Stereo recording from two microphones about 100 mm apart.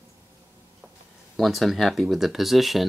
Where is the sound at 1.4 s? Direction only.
Centre (ahead or behind).